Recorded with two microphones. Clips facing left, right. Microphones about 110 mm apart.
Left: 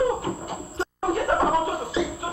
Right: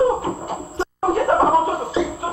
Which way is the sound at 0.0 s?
35° right (ahead or behind).